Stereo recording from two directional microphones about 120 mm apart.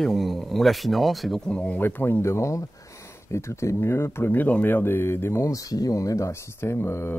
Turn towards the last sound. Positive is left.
turn(degrees=20)  # may be behind; listen again after turning